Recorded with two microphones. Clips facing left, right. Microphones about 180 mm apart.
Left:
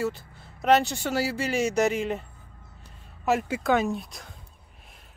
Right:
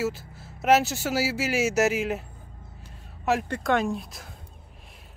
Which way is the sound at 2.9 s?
Centre (ahead or behind).